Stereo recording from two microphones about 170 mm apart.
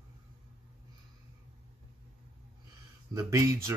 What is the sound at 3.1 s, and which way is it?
Speech, 20° right (ahead or behind).